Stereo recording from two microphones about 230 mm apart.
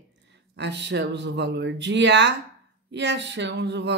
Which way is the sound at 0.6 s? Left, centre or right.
Right.